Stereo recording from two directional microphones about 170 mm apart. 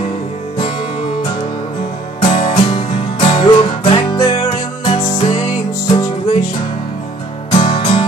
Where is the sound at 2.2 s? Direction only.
35° left (ahead or behind).